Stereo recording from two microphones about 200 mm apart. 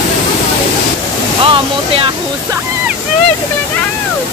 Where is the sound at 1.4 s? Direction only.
25° right (ahead or behind).